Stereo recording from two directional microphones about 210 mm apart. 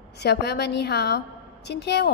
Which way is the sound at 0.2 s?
50° left (ahead or behind).